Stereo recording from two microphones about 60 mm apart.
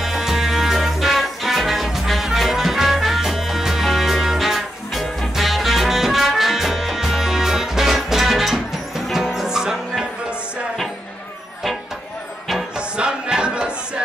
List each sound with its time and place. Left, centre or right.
0.0 s music: centre
12.7 s music: centre